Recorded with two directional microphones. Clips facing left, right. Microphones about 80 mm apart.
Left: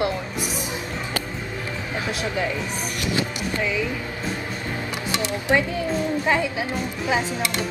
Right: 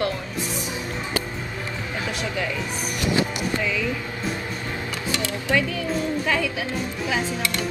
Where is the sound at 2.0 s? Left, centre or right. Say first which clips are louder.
Left 2 dB; left.